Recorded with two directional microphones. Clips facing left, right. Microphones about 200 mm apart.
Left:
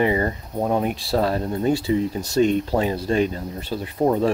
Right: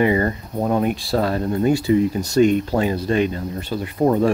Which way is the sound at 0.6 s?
5° left (ahead or behind).